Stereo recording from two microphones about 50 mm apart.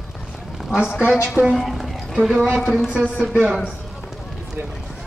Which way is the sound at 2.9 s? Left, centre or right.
Right.